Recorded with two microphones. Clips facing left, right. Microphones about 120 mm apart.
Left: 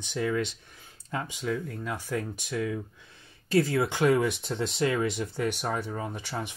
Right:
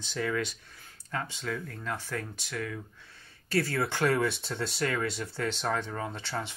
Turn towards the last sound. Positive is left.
turn(degrees=15)  # may be behind; listen again after turning